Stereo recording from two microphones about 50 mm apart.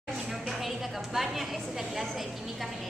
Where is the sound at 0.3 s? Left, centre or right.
Centre.